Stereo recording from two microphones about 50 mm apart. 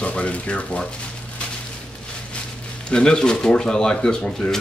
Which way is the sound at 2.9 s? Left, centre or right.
Centre.